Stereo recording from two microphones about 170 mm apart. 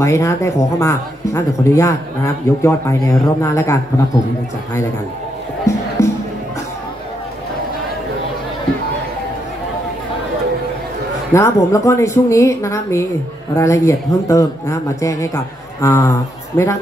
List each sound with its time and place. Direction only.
0.0 s speech: 15° left (ahead or behind)
11.3 s speech: 15° left (ahead or behind)